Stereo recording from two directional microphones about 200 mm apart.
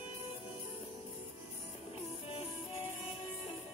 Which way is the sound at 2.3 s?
25° left (ahead or behind).